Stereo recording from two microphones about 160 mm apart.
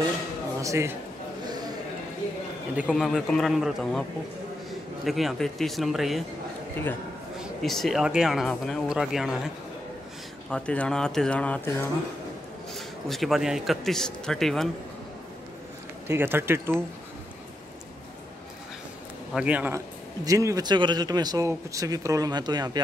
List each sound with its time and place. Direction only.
0.6 s speech: 20° right (ahead or behind)
1.4 s a sound: 25° right (ahead or behind)
2.7 s a man's voice: 5° right (ahead or behind)
5.0 s a man's voice: centre (ahead or behind)
7.6 s a man's voice: centre (ahead or behind)
10.5 s speech: 5° left (ahead or behind)
12.7 s a man's voice: centre (ahead or behind)
16.1 s speech: 15° right (ahead or behind)
19.3 s speech: 10° right (ahead or behind)
20.2 s speech: 20° right (ahead or behind)